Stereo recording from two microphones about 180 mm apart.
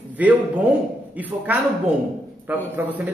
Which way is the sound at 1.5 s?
10° right (ahead or behind).